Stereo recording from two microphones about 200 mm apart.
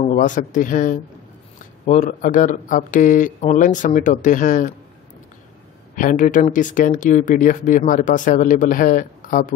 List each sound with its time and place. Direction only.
0.0 s speech: 40° left (ahead or behind)
5.9 s speech: 40° left (ahead or behind)